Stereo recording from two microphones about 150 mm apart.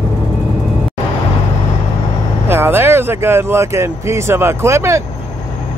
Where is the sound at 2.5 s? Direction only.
15° right (ahead or behind).